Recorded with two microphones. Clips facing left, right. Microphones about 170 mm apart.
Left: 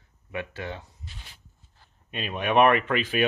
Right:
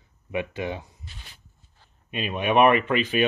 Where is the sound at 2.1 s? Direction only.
5° right (ahead or behind).